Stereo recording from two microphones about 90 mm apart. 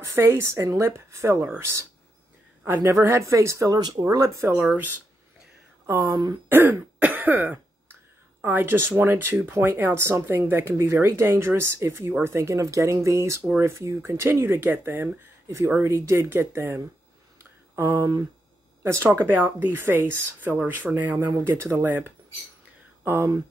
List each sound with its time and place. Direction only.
0.1 s speech: 30° right (ahead or behind)
2.6 s a woman's voice: 25° right (ahead or behind)
2.9 s speech: 35° right (ahead or behind)
4.7 s speech: 20° right (ahead or behind)
5.9 s speech: 45° right (ahead or behind)
6.5 s speech: 20° right (ahead or behind)
15.4 s speech: 35° right (ahead or behind)
23.0 s speech: 35° right (ahead or behind)